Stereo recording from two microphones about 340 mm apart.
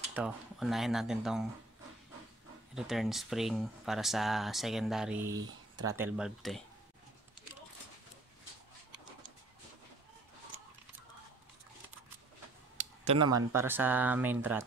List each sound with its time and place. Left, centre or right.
0.1 s speech: centre
2.7 s speech: centre
12.7 s a sound: centre
13.5 s speech: centre